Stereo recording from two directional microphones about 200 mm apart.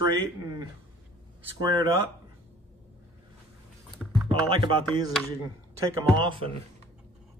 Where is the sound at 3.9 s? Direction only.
5° right (ahead or behind).